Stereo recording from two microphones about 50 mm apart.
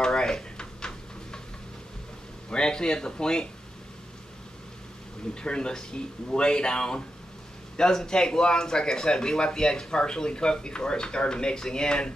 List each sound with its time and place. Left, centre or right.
0.0 s drawer open or close: centre
2.5 s speech: centre
5.3 s speech: centre